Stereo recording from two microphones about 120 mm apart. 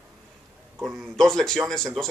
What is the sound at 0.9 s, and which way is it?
Speech, 5° left (ahead or behind).